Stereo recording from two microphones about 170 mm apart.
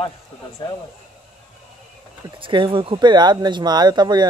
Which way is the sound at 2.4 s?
30° right (ahead or behind).